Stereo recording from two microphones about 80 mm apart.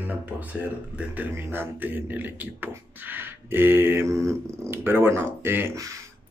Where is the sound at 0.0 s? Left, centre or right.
Centre.